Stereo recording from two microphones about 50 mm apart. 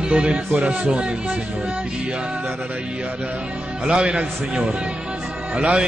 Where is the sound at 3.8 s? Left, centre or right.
Centre.